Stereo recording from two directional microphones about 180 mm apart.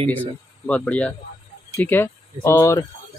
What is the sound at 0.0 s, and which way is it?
Speech, 10° left (ahead or behind).